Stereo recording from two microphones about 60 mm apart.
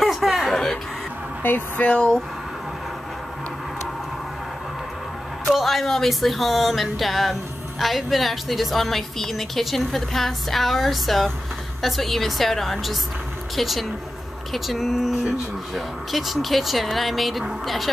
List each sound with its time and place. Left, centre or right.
0.0 s a sound: centre
1.4 s speech: left
1.9 s speech: centre
5.5 s a woman's voice: centre